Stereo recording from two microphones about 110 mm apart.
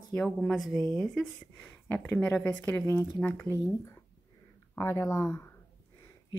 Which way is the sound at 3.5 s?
25° left (ahead or behind).